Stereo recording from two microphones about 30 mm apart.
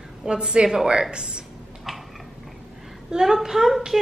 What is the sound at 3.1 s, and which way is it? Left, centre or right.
Speech, centre.